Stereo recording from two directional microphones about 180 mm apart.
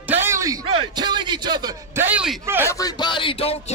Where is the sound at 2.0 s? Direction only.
5° right (ahead or behind).